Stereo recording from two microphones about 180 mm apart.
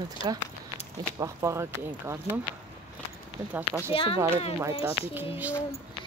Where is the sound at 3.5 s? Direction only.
10° right (ahead or behind).